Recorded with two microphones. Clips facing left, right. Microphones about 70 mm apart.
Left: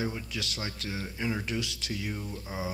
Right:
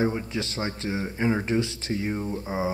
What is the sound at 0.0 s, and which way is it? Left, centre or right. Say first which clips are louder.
Speech: right 8 dB; right.